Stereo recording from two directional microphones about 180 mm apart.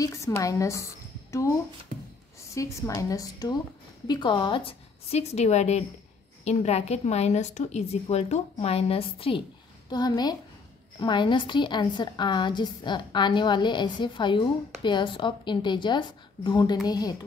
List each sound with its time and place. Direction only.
0.0 s a woman's voice: 15° left (ahead or behind)
1.9 s music: 50° right (ahead or behind)
2.5 s a woman's voice: 15° left (ahead or behind)